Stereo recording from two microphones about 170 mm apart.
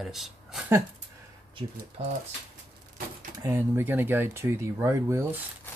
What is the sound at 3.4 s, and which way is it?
Speech, 15° right (ahead or behind).